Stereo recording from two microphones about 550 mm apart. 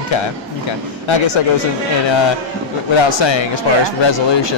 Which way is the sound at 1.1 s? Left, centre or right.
Left.